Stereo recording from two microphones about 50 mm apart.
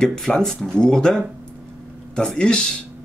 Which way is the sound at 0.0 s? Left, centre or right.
Centre.